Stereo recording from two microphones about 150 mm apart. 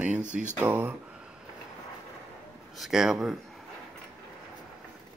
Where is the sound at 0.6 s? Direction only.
10° right (ahead or behind).